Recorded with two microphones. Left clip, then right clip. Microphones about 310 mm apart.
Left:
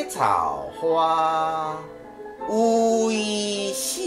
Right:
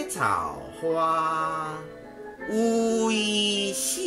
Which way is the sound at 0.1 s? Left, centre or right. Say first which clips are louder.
Left 5 dB; centre.